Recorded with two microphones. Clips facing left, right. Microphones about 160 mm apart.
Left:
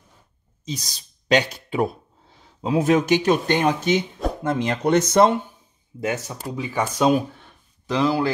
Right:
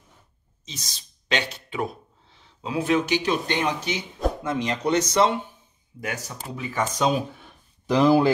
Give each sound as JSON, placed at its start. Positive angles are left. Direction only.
{"t": 0.7, "sound": "speech", "side_deg": 35}
{"t": 5.9, "sound": "speech", "side_deg": 25}
{"t": 7.4, "sound": "a sound", "side_deg": -10}